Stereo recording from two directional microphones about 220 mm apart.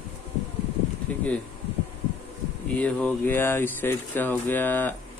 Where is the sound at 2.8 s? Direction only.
5° left (ahead or behind).